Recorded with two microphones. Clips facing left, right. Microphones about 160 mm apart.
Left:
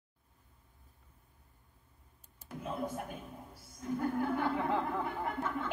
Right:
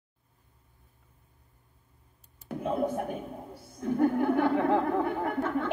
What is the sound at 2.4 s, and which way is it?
A man's voice, 60° right (ahead or behind).